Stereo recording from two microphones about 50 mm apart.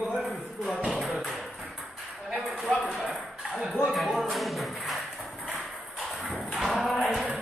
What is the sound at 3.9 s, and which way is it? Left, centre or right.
Music, centre.